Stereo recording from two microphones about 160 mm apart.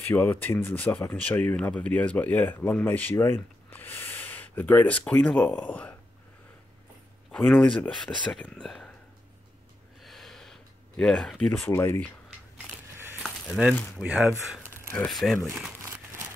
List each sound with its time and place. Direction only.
0.1 s speech: 10° left (ahead or behind)
7.2 s speech: centre (ahead or behind)
10.0 s a sound: centre (ahead or behind)
11.7 s speech: 15° left (ahead or behind)
13.2 s coin: 5° right (ahead or behind)
13.9 s speech: 10° right (ahead or behind)
15.4 s speech: 15° right (ahead or behind)